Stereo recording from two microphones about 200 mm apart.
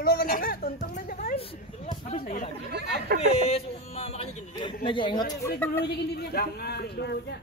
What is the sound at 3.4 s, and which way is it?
Speech, 30° left (ahead or behind).